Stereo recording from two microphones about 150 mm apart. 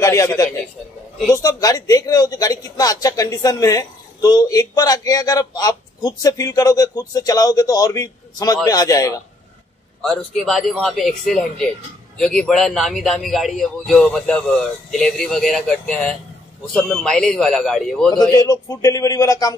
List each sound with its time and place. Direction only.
0.0 s a sound: 20° left (ahead or behind)
1.3 s a man's voice: 25° left (ahead or behind)
10.3 s a man's voice: centre (ahead or behind)
16.7 s a man's voice: 5° left (ahead or behind)
18.1 s a man's voice: 25° left (ahead or behind)